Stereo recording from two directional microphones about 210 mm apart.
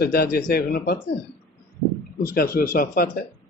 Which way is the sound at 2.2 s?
45° left (ahead or behind).